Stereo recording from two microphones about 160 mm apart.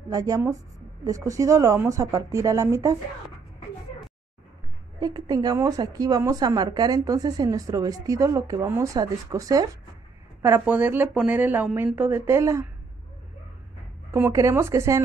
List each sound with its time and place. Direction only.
0.1 s a woman's voice: 20° right (ahead or behind)
5.0 s a woman's voice: 25° right (ahead or behind)
14.1 s speech: 15° right (ahead or behind)